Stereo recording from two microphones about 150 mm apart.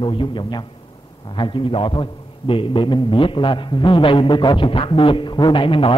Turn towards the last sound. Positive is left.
turn(degrees=35)  # may be behind; listen again after turning